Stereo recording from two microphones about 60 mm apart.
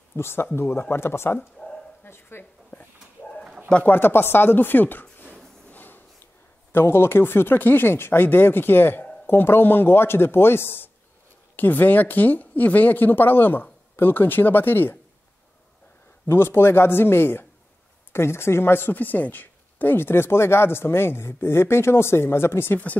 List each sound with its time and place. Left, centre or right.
0.1 s speech: left
2.0 s dog: left
3.8 s speech: left
5.7 s a sound: left
6.7 s speech: left
16.3 s speech: left